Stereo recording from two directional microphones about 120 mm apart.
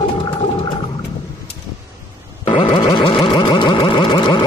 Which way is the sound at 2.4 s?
45° left (ahead or behind).